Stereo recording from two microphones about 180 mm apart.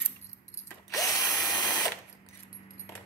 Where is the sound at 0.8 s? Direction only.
20° left (ahead or behind).